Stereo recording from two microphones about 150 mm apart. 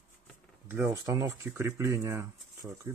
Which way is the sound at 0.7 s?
20° right (ahead or behind).